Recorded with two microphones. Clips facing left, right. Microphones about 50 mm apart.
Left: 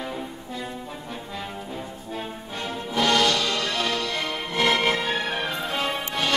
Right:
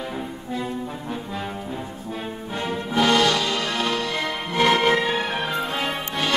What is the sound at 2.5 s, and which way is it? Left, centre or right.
Music, right.